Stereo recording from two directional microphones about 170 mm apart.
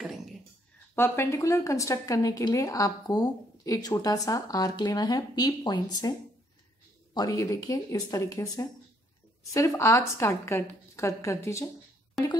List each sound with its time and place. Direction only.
0.9 s speech: 15° left (ahead or behind)
7.2 s a woman's voice: 20° left (ahead or behind)